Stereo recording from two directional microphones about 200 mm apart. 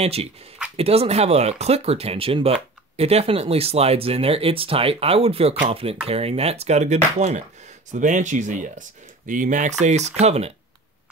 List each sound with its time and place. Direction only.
0.0 s speech: 30° right (ahead or behind)